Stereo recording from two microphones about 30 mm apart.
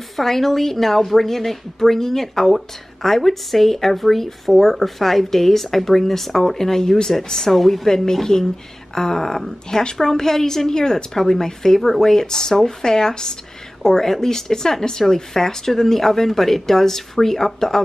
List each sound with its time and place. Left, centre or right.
0.1 s a woman's voice: centre
7.5 s a woman's voice: centre